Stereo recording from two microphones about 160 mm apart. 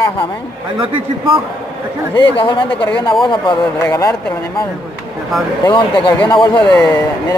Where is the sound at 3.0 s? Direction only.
30° left (ahead or behind).